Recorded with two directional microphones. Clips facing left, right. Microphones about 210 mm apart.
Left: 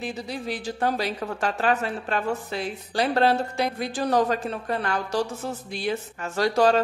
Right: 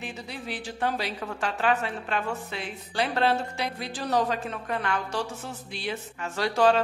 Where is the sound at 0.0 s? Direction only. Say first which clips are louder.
Left 6 dB; 40° left (ahead or behind).